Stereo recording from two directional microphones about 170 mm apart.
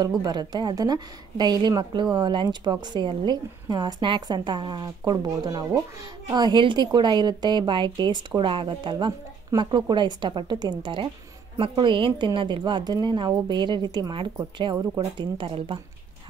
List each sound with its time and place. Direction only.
0.2 s a woman's voice: 25° right (ahead or behind)